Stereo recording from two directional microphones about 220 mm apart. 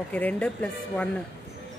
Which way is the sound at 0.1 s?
5° left (ahead or behind).